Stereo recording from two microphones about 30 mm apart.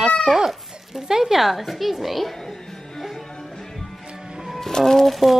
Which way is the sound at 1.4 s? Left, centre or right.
Centre.